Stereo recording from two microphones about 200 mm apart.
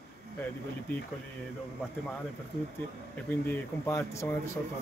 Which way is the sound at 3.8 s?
15° left (ahead or behind).